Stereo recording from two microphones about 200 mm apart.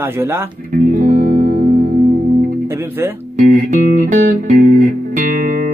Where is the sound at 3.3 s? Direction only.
40° right (ahead or behind).